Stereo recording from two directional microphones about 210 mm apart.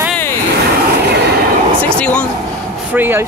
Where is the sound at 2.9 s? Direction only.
10° right (ahead or behind).